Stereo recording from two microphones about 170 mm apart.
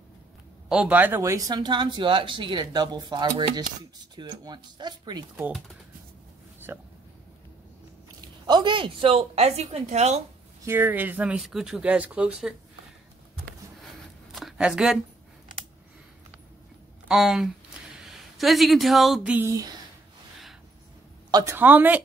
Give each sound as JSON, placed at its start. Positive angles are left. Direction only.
{"t": 0.7, "sound": "speech", "side_deg": -5}
{"t": 6.7, "sound": "speech", "side_deg": -15}
{"t": 8.5, "sound": "a woman's voice", "side_deg": -25}
{"t": 10.6, "sound": "speech", "side_deg": -10}
{"t": 14.3, "sound": "a sound", "side_deg": 0}
{"t": 17.1, "sound": "speech", "side_deg": 0}
{"t": 21.3, "sound": "speech", "side_deg": -20}
{"t": 21.5, "sound": "speech", "side_deg": -10}